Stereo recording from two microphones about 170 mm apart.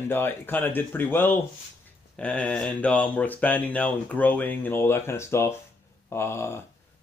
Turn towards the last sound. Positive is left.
turn(degrees=15)  # may be behind; listen again after turning